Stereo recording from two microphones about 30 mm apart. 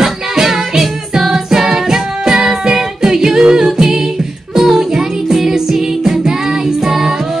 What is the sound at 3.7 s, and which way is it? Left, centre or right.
A capella, centre.